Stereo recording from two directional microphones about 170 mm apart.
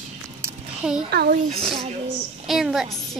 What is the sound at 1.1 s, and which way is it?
Speech, 70° right (ahead or behind).